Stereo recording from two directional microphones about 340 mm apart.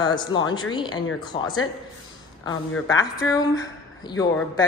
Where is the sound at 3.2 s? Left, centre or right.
Centre.